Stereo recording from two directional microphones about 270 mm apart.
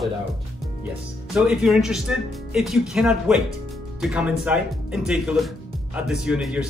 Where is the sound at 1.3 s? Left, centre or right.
Centre.